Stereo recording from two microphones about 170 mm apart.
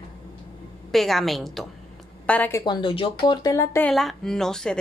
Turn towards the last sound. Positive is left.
turn(degrees=5)  # may be behind; listen again after turning